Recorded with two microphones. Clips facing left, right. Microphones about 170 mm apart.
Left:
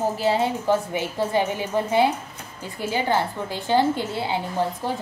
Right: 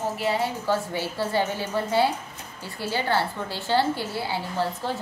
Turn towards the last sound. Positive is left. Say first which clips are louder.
# left 2 dB
turn(degrees=20)  # may be behind; listen again after turning